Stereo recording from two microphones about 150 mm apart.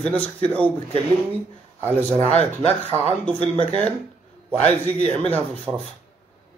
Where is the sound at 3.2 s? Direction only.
10° left (ahead or behind).